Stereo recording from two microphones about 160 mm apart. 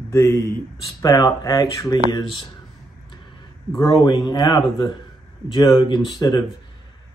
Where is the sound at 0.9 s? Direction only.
20° left (ahead or behind).